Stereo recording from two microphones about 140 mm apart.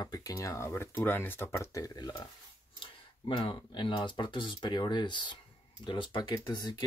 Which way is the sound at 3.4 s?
35° left (ahead or behind).